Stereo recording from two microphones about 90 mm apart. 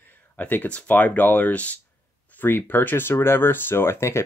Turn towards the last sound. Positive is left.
turn(degrees=30)  # may be behind; listen again after turning